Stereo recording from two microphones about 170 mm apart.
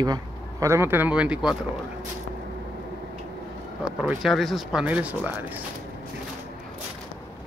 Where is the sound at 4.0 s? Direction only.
Centre (ahead or behind).